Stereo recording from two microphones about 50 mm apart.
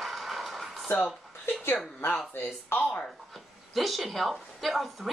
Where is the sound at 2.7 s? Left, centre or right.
Left.